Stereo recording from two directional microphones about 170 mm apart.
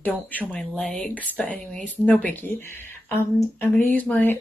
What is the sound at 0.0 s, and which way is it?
Speech, 10° left (ahead or behind).